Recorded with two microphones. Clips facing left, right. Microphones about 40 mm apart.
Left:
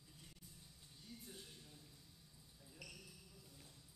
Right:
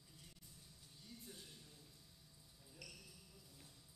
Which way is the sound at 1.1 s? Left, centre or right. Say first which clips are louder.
Left 1 dB; centre.